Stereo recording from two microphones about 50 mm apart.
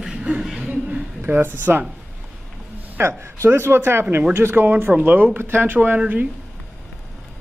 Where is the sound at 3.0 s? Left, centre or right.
Right.